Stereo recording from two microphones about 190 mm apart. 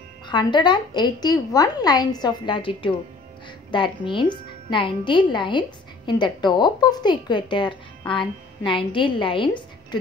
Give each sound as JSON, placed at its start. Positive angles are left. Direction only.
{"t": 0.3, "sound": "a woman's voice", "side_deg": 25}